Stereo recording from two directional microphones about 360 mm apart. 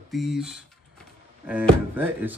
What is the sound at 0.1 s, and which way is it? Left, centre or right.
Speech, centre.